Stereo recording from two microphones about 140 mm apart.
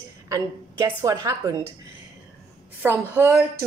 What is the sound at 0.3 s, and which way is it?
Speech, 20° right (ahead or behind).